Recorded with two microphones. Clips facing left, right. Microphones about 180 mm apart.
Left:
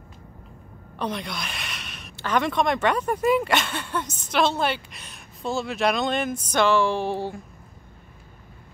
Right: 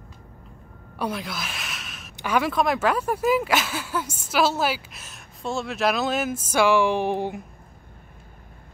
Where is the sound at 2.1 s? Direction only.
10° right (ahead or behind).